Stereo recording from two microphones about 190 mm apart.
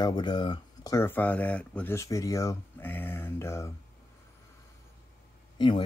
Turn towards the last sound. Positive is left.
turn(degrees=25)  # may be behind; listen again after turning